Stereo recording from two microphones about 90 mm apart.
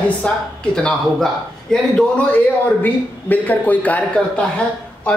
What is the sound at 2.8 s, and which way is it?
A man's voice, 20° left (ahead or behind).